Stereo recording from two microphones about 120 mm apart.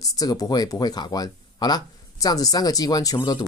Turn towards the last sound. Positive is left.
turn(degrees=35)  # may be behind; listen again after turning